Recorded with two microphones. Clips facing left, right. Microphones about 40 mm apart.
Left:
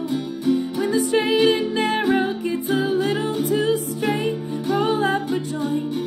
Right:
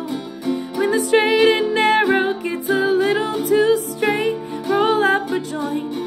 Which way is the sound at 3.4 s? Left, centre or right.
Right.